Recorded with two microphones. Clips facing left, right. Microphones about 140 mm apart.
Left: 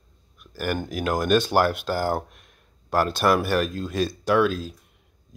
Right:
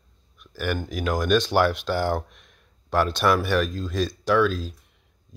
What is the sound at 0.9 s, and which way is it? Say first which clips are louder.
Speech: left 1 dB; 50° left (ahead or behind).